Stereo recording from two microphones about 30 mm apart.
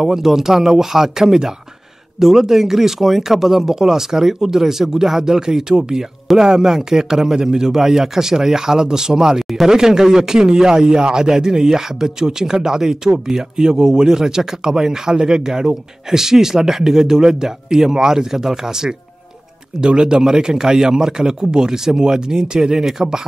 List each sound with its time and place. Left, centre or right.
0.0 s a man's voice: centre